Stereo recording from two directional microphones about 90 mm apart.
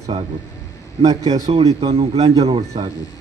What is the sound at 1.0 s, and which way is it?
Speech, 45° right (ahead or behind).